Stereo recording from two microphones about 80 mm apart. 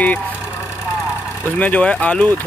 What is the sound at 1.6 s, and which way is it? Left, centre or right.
Speech, centre.